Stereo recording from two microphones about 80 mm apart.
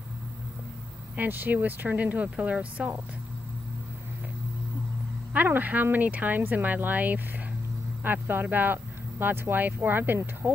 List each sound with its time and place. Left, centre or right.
1.1 s speech: right
5.3 s speech: right